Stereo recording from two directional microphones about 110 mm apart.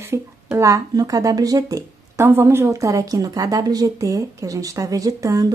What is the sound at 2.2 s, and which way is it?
Speech, 20° right (ahead or behind).